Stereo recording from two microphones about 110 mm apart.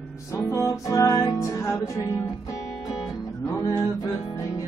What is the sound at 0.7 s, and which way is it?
Music, 30° left (ahead or behind).